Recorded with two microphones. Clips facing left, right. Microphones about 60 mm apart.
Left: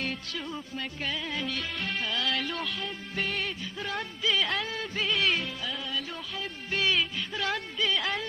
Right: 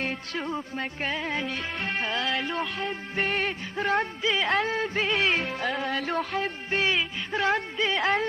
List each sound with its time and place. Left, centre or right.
0.0 s music: right
4.2 s music: right
4.5 s music: right
6.7 s music: right